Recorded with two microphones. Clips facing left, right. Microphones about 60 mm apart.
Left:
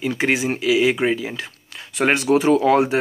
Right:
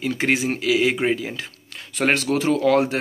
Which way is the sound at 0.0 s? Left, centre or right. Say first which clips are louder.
Left 1 dB; centre.